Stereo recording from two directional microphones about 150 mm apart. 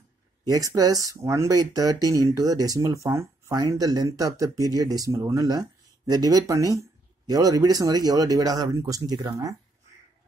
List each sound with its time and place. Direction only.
0.5 s speech: 25° right (ahead or behind)